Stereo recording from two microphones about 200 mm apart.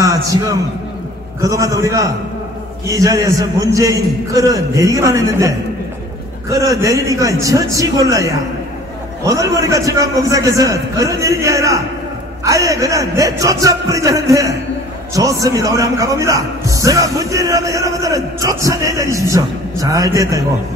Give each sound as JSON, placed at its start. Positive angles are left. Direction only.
{"t": 0.0, "sound": "a man's voice", "side_deg": -15}
{"t": 6.5, "sound": "a man's voice", "side_deg": -15}